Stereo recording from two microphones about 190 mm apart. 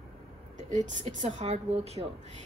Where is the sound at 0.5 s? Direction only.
40° right (ahead or behind).